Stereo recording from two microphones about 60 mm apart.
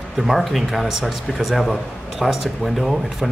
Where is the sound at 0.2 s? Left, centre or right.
Centre.